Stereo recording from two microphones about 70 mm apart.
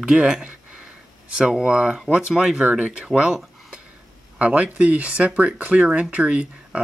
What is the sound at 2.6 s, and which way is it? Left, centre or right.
Speech, right.